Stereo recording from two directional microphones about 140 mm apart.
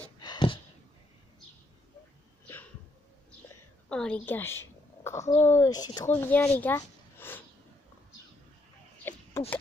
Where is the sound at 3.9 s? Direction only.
5° left (ahead or behind); by 6.0 s 30° left (ahead or behind).